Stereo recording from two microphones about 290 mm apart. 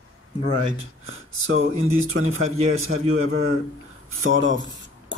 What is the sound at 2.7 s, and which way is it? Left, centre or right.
A man's voice, right.